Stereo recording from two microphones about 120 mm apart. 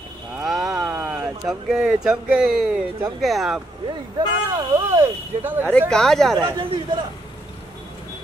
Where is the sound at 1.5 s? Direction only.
5° right (ahead or behind).